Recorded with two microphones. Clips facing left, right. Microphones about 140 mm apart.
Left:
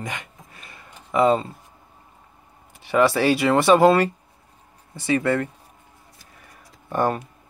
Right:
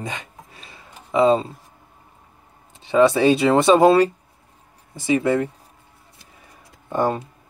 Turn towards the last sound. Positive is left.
turn(degrees=-20)  # may be behind; listen again after turning